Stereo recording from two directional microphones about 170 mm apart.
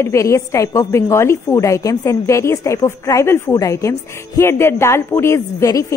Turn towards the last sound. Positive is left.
turn(degrees=20)  # may be behind; listen again after turning